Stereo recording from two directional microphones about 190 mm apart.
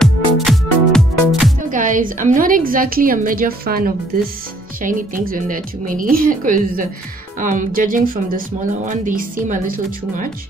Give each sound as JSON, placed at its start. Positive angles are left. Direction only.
{"t": 0.0, "sound": "music", "side_deg": 0}
{"t": 1.7, "sound": "speech", "side_deg": -45}